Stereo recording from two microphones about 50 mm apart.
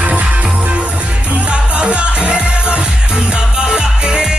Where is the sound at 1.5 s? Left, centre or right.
Right.